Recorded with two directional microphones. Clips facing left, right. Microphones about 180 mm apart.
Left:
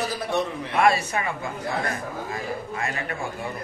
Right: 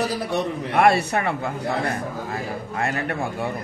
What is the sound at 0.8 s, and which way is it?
Speech, 65° right (ahead or behind).